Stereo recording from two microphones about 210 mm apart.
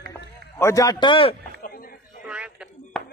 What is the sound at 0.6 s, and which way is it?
Speech, 15° left (ahead or behind).